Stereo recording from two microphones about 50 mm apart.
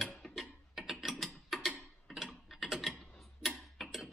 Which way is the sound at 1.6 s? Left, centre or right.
Centre.